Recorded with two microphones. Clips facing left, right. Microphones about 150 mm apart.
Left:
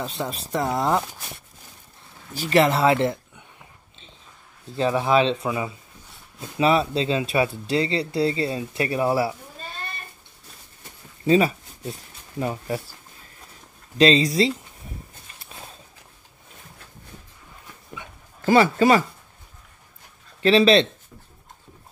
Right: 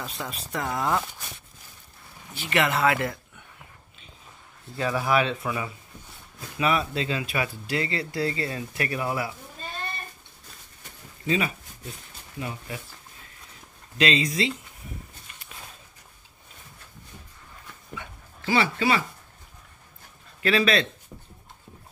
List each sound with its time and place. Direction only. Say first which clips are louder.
0.0 s speech: left 6 dB; 30° left (ahead or behind)
2.3 s speech: left 6 dB; 35° left (ahead or behind)
4.7 s speech: left 4 dB; 25° left (ahead or behind)
11.2 s speech: left 8 dB; 35° left (ahead or behind)
13.9 s speech: left 7 dB; 35° left (ahead or behind)
18.4 s speech: left 7 dB; 45° left (ahead or behind)
20.4 s speech: left 7 dB; 30° left (ahead or behind)